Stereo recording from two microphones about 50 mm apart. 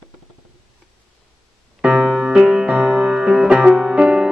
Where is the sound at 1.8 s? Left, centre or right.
Centre.